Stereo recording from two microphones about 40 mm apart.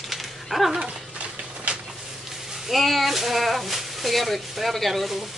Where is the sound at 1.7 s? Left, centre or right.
Right.